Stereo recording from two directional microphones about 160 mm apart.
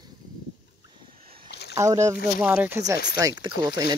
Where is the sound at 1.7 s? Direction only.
20° right (ahead or behind).